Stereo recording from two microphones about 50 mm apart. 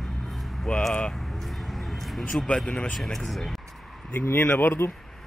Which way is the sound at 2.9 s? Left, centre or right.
Centre.